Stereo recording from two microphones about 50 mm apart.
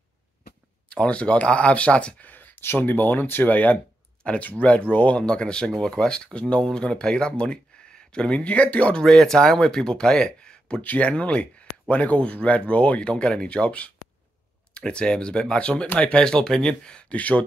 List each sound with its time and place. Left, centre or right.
0.8 s speech: left
5.2 s speech: centre
8.9 s speech: centre
10.8 s speech: left
13.1 s speech: centre
16.2 s speech: centre
17.1 s speech: left